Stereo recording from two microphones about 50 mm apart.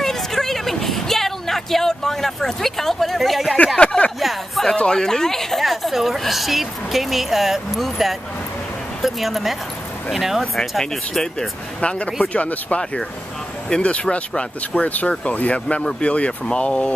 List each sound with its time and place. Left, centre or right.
0.0 s music: centre
3.5 s speech: left
4.2 s a woman's voice: centre
4.7 s a woman's voice: centre
11.8 s speech: left